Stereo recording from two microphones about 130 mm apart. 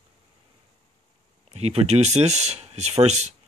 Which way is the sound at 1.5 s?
50° right (ahead or behind).